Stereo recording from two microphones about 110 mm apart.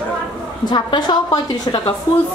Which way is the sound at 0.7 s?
40° left (ahead or behind).